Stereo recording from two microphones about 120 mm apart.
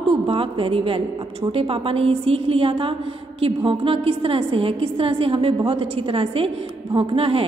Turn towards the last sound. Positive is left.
turn(degrees=-50)  # may be behind; listen again after turning